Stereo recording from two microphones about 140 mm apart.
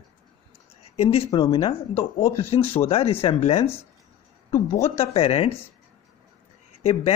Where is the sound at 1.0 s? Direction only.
45° left (ahead or behind).